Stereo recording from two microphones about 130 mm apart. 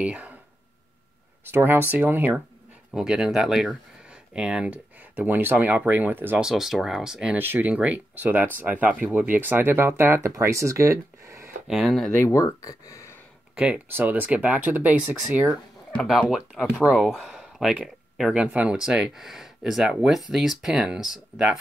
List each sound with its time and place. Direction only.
0.0 s speech: 10° right (ahead or behind)
1.5 s speech: 15° right (ahead or behind)
6.4 s speech: 5° right (ahead or behind); by 11.5 s 20° right (ahead or behind)
11.6 s speech: centre (ahead or behind)
12.3 s speech: 25° left (ahead or behind)
13.6 s speech: 15° right (ahead or behind)
16.0 s speech: centre (ahead or behind)